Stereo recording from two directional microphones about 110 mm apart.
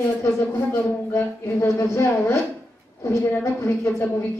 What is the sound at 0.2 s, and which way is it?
Speech, 20° left (ahead or behind).